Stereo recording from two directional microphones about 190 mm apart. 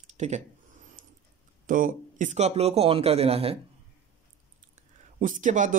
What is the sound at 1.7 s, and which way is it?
Speech, 45° right (ahead or behind).